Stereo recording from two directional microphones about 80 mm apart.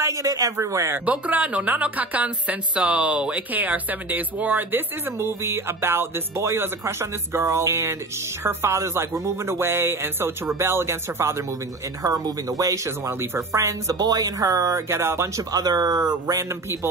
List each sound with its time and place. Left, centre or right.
0.0 s speech: right
1.0 s speech: centre
12.0 s speech: right
13.2 s speech: right
15.5 s speech: right